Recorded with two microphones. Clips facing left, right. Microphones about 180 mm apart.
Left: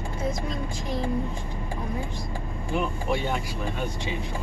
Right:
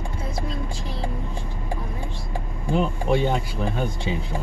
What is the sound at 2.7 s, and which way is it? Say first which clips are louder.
Speech: right 5 dB; 30° right (ahead or behind).